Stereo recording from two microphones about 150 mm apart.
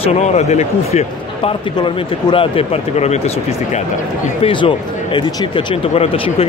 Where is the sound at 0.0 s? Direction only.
45° left (ahead or behind).